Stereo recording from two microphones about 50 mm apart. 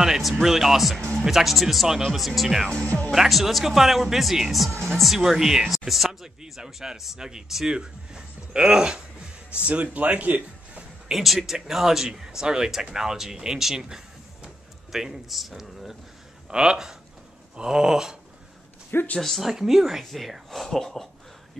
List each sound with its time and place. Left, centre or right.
0.0 s speech: centre; by 10.8 s right
11.1 s speech: centre
16.4 s speech: centre
19.1 s speech: centre